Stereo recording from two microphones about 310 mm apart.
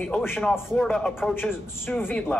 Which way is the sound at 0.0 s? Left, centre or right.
Centre.